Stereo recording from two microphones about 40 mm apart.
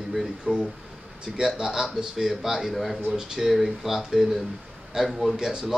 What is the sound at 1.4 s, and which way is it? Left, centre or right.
A man's voice, centre.